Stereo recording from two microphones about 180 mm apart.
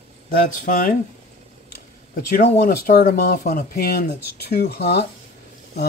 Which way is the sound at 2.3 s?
50° left (ahead or behind).